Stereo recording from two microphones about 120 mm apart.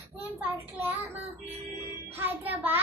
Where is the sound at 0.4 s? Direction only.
15° right (ahead or behind).